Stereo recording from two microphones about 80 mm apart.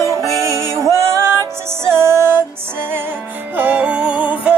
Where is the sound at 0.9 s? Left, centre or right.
Right.